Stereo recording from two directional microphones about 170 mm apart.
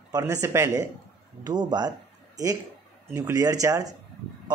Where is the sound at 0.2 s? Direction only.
15° right (ahead or behind).